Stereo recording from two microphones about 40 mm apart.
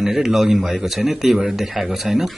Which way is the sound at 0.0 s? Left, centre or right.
Centre.